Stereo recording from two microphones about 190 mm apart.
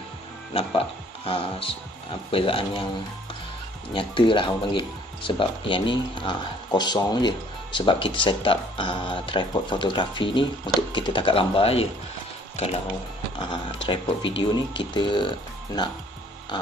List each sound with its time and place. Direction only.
0.5 s speech: 30° left (ahead or behind)
3.9 s speech: 25° left (ahead or behind)
13.8 s speech: 25° left (ahead or behind)